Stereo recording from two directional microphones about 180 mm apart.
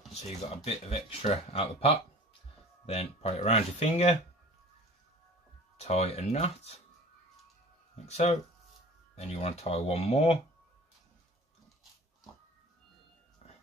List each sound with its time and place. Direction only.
0.7 s speech: 35° left (ahead or behind)
5.8 s speech: 35° left (ahead or behind)
8.1 s speech: 35° left (ahead or behind)